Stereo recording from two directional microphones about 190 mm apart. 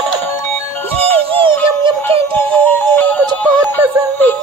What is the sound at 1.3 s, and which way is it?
Music, 30° right (ahead or behind).